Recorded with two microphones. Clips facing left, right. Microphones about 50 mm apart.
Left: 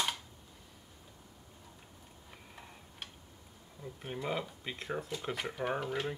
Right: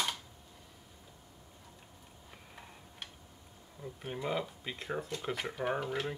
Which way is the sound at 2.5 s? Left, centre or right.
Centre.